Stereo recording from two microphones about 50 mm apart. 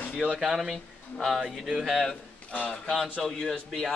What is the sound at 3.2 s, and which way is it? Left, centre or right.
Speech, centre.